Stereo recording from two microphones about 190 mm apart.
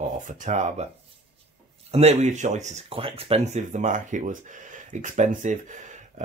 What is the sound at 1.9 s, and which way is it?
Speech, 35° right (ahead or behind).